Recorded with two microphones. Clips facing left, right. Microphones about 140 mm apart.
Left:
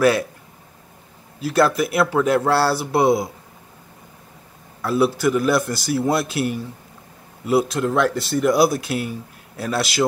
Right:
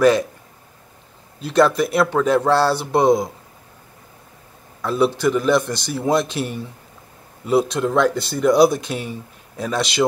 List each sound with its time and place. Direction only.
1.4 s speech: 5° left (ahead or behind)
4.8 s speech: 5° left (ahead or behind)